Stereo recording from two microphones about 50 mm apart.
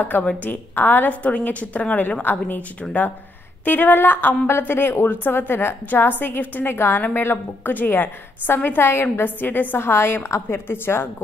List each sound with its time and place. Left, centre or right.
0.4 s a woman's voice: left
1.2 s a woman's voice: left
3.6 s a woman's voice: left
9.8 s a woman's voice: left